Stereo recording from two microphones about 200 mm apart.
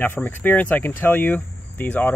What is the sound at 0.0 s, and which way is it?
Speech, 10° left (ahead or behind).